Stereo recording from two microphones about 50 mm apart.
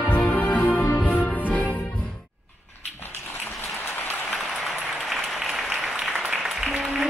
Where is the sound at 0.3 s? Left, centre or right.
Left.